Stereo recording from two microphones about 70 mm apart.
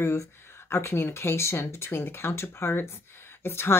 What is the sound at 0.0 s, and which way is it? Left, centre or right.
Speech, left.